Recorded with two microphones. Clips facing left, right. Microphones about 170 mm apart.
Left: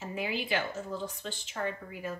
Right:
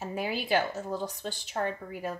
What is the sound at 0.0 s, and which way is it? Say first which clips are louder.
A woman's voice: right 2 dB; 40° right (ahead or behind).